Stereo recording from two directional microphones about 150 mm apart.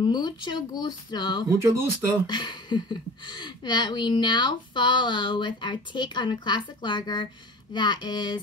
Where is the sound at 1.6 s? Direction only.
15° right (ahead or behind).